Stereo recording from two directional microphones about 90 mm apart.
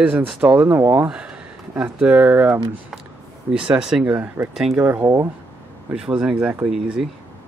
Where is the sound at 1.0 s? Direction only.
10° right (ahead or behind).